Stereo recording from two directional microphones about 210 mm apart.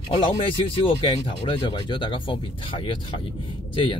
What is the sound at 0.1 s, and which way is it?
Speech, 25° left (ahead or behind).